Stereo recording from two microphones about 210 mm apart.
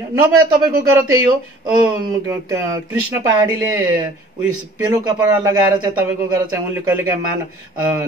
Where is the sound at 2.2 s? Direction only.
15° right (ahead or behind).